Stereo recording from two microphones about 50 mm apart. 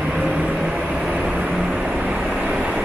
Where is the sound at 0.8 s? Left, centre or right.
Right.